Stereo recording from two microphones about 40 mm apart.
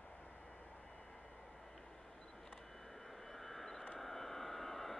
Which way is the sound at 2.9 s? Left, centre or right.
Centre.